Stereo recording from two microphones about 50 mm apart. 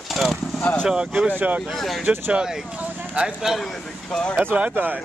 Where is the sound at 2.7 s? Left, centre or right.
Right.